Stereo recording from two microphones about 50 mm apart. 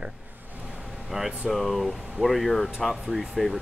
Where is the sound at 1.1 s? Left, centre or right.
Centre.